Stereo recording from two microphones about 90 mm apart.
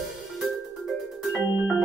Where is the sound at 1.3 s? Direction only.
20° right (ahead or behind).